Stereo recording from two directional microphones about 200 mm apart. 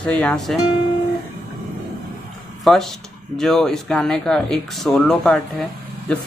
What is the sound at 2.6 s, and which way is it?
Speech, centre (ahead or behind).